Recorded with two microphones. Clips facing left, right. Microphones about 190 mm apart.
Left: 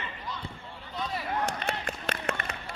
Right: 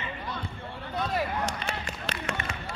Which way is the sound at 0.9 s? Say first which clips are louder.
Right 5 dB; 65° right (ahead or behind).